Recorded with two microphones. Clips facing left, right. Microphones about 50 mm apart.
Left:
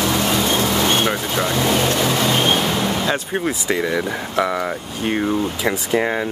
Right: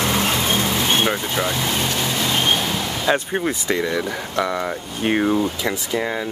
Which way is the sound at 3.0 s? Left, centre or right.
Centre.